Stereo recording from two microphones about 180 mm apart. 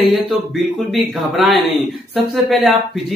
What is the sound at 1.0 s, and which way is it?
Speech, centre (ahead or behind).